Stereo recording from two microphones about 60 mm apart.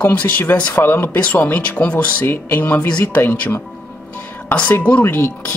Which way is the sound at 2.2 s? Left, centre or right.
Left.